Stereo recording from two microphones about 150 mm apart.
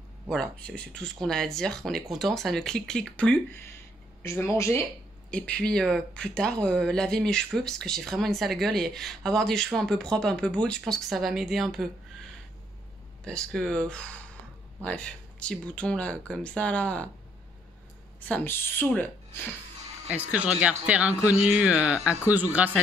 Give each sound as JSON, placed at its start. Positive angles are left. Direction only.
{"t": 0.3, "sound": "speech", "side_deg": 5}
{"t": 4.2, "sound": "speech", "side_deg": 20}
{"t": 5.3, "sound": "speech", "side_deg": 5}
{"t": 13.2, "sound": "speech", "side_deg": 5}
{"t": 18.3, "sound": "speech", "side_deg": 15}
{"t": 20.1, "sound": "speech", "side_deg": -10}